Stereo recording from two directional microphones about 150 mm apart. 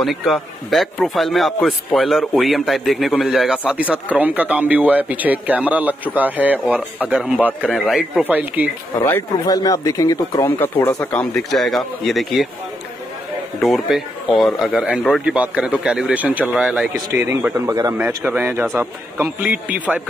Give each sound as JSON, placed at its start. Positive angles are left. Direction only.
{"t": 0.0, "sound": "a man's voice", "side_deg": 0}
{"t": 7.6, "sound": "a man's voice", "side_deg": 5}
{"t": 8.2, "sound": "a man's voice", "side_deg": -10}
{"t": 9.0, "sound": "a man's voice", "side_deg": 25}
{"t": 13.6, "sound": "a man's voice", "side_deg": 0}
{"t": 17.1, "sound": "a man's voice", "side_deg": -15}